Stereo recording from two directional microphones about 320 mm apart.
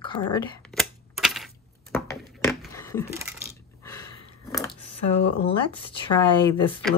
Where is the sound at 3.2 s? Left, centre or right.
Centre.